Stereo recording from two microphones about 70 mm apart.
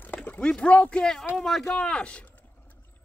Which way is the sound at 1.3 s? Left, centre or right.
Centre.